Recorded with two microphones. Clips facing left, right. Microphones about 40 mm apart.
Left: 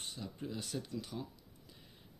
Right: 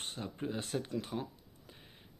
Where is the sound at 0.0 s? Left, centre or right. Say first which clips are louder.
Right 4 dB; right.